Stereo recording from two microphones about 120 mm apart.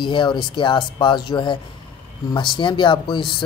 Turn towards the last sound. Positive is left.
turn(degrees=40)  # may be behind; listen again after turning